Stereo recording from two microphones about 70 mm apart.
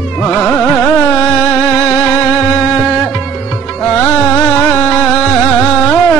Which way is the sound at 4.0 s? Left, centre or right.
Centre.